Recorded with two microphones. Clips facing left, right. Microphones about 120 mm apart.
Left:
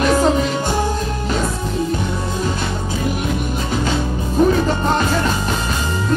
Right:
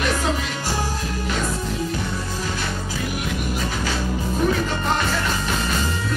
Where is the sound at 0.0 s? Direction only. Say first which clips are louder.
Left 8 dB; 35° left (ahead or behind).